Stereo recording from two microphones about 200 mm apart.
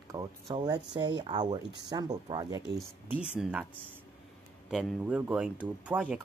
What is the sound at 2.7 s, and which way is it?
Speech, 5° right (ahead or behind).